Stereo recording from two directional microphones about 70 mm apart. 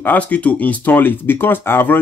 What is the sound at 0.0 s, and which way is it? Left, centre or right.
Speech, left.